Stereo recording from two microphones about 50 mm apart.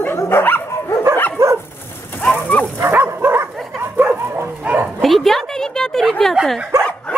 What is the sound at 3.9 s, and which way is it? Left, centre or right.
Dog, right.